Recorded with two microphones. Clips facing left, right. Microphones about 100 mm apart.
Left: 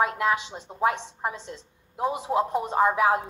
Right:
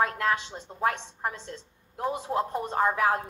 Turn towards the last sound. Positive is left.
turn(degrees=15)  # may be behind; listen again after turning